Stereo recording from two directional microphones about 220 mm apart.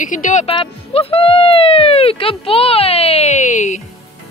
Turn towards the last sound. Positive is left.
turn(degrees=30)  # may be behind; listen again after turning